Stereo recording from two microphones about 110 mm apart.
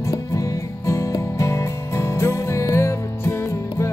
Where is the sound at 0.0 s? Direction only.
30° left (ahead or behind).